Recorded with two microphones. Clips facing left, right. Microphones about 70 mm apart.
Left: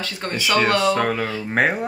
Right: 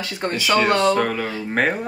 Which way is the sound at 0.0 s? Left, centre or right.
Centre.